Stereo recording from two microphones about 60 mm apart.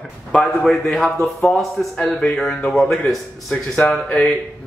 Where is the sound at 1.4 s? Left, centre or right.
Left.